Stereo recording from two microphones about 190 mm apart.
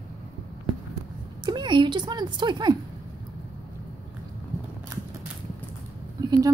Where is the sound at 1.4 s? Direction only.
25° right (ahead or behind).